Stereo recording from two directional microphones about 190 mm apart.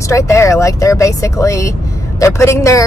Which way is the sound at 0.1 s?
15° left (ahead or behind).